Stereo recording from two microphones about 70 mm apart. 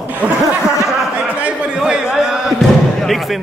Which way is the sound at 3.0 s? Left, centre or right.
Centre.